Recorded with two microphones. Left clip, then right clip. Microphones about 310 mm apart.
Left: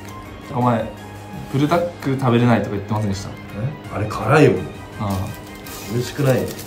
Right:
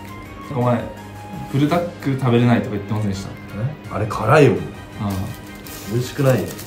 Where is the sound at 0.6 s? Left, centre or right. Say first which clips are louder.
Left 1 dB; centre.